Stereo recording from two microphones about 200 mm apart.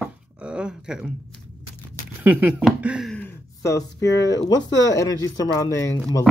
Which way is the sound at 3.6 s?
15° left (ahead or behind).